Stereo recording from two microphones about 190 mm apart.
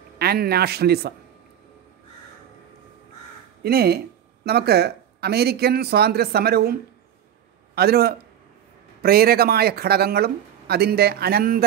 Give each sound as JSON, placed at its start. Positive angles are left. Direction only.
{"t": 0.2, "sound": "speech", "side_deg": -55}
{"t": 3.6, "sound": "speech", "side_deg": -55}